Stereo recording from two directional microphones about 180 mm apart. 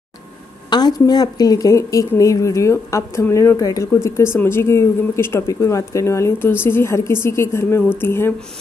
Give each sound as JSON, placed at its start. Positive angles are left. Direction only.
{"t": 0.7, "sound": "a woman's voice", "side_deg": 25}